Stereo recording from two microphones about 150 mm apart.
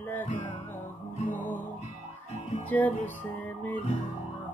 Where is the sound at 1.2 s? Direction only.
60° left (ahead or behind).